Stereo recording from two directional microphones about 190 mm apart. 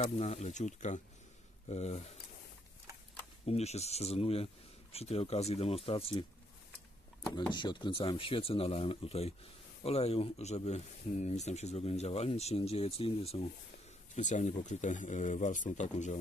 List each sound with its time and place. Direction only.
0.0 s speech: 35° left (ahead or behind)
3.4 s speech: 35° left (ahead or behind)
7.5 s speech: 25° left (ahead or behind)